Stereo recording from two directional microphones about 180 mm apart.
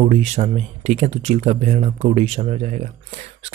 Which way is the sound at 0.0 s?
35° right (ahead or behind).